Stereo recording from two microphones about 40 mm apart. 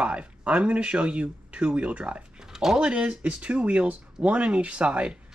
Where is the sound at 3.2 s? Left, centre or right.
Right.